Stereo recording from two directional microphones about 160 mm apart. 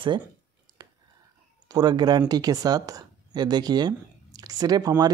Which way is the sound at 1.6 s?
25° right (ahead or behind).